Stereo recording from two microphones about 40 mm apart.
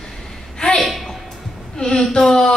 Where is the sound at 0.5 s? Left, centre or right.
Centre.